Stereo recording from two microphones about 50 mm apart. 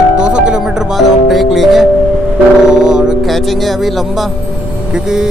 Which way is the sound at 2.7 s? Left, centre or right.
Centre.